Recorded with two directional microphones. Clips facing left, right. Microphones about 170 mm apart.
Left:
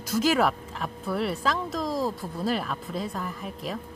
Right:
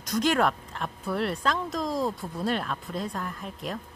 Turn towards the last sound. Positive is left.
turn(degrees=0)  # may be behind; listen again after turning